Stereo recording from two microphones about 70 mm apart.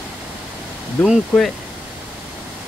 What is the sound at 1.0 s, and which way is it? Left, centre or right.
Speech, centre.